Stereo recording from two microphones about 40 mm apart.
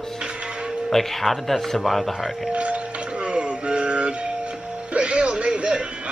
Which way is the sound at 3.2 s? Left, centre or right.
Right.